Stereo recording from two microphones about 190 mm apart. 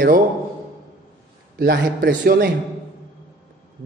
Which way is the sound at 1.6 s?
60° right (ahead or behind).